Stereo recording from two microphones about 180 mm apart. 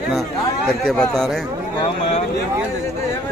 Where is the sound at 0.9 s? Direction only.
5° left (ahead or behind).